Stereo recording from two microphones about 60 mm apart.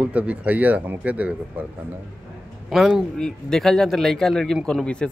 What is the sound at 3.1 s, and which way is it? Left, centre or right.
A man's voice, centre.